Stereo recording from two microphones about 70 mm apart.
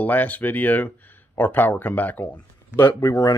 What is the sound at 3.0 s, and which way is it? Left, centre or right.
Speech, left.